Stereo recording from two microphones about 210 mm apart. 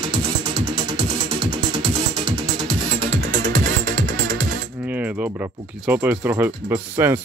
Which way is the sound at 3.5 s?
40° right (ahead or behind).